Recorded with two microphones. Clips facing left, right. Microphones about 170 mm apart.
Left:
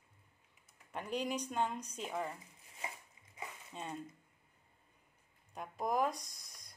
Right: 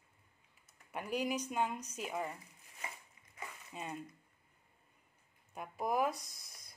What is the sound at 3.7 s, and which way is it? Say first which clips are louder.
Speech: even; 5° right (ahead or behind).